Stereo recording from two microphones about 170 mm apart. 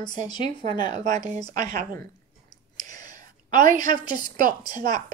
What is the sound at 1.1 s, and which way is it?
Speech, 45° right (ahead or behind).